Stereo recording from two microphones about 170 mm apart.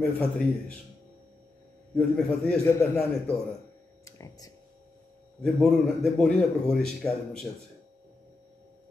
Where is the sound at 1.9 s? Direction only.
5° left (ahead or behind).